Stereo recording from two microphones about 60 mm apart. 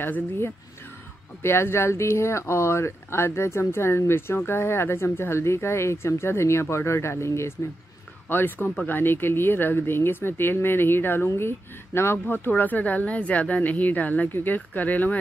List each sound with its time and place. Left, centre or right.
0.0 s speech: left
8.3 s speech: left